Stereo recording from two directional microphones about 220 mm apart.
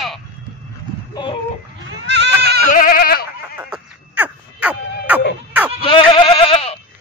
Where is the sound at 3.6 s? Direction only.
5° right (ahead or behind).